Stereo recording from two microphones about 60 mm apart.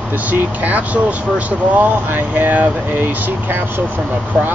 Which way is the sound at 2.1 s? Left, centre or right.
Right.